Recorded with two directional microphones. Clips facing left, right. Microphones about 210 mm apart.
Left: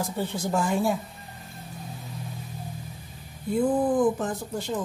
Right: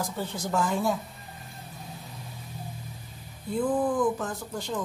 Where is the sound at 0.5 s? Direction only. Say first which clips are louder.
Left 1 dB; 10° left (ahead or behind).